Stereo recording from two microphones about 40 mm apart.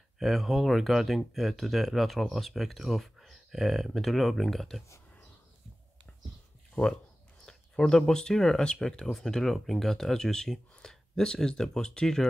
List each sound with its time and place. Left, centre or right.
0.2 s speech: centre
6.8 s speech: left
7.4 s a sound: centre
8.1 s speech: centre